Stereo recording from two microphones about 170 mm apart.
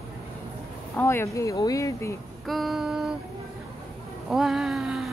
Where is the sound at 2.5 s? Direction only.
Centre (ahead or behind).